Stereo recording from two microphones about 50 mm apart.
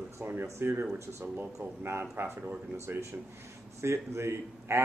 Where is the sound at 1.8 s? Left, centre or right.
Right.